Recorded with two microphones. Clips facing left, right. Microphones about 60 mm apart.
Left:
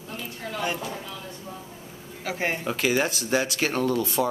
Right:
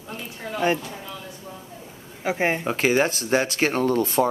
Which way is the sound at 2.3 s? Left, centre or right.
Right.